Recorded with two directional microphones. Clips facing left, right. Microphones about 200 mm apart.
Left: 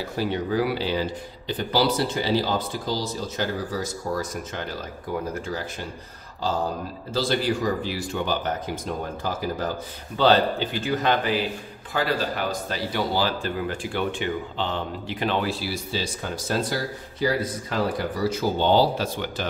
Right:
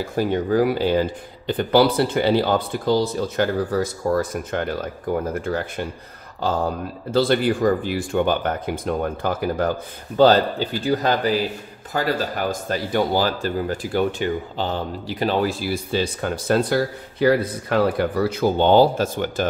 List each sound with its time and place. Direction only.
0.0 s speech: 50° right (ahead or behind)
7.1 s speech: 60° right (ahead or behind)
10.1 s speech: 40° right (ahead or behind)